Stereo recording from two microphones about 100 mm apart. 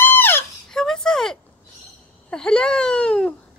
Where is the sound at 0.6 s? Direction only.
5° left (ahead or behind).